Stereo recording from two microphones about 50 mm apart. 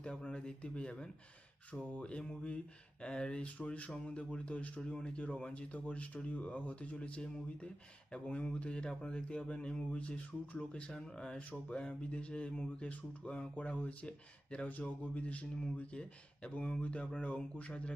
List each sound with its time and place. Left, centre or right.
0.0 s speech: centre